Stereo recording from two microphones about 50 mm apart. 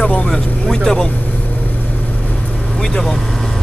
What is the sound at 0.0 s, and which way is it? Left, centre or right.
Vehicle, left.